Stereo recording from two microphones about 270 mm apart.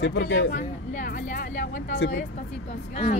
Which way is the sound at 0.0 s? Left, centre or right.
Left.